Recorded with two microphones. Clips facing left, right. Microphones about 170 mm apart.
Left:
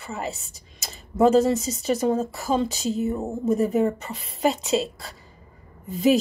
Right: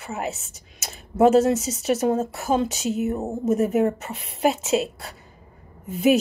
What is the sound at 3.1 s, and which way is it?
Speech, 20° right (ahead or behind).